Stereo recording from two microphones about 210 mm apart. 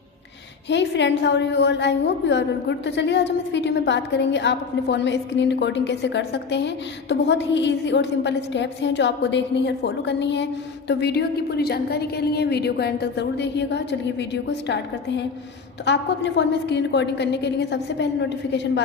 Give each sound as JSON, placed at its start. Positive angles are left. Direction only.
{"t": 0.7, "sound": "a woman's voice", "side_deg": 55}